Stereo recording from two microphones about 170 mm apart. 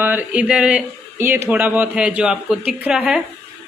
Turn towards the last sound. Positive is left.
turn(degrees=-5)  # may be behind; listen again after turning